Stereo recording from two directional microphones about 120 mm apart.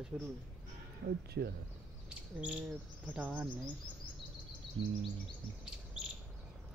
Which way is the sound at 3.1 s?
15° right (ahead or behind).